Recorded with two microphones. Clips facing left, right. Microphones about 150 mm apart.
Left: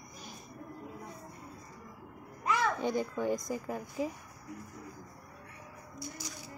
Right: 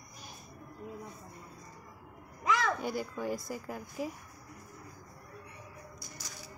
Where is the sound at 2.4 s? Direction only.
90° right.